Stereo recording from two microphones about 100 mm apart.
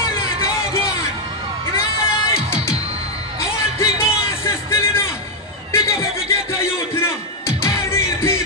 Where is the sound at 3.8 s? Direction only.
25° left (ahead or behind).